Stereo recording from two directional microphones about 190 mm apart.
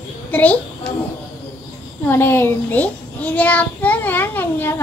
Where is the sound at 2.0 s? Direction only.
10° left (ahead or behind).